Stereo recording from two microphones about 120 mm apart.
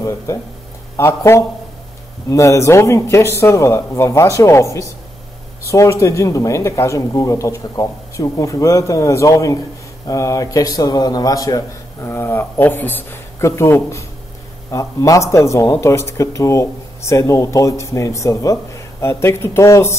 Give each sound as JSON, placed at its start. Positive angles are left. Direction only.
{"t": 0.9, "sound": "speech", "side_deg": 20}